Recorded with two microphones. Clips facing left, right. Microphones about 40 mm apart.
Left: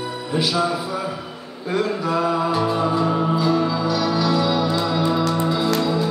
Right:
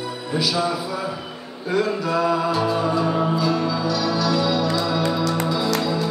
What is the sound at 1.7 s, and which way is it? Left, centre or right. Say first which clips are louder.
Music: even; centre.